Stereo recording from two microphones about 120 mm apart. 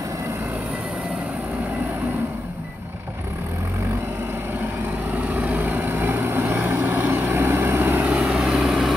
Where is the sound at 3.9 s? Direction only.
20° right (ahead or behind); by 9.0 s centre (ahead or behind).